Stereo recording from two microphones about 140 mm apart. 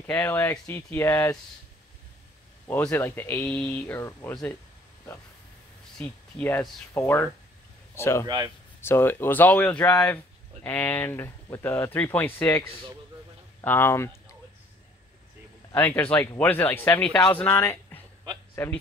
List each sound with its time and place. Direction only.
0.0 s speech: 15° left (ahead or behind)
2.7 s speech: 15° left (ahead or behind)
5.9 s speech: 10° left (ahead or behind)
15.7 s speech: 15° left (ahead or behind)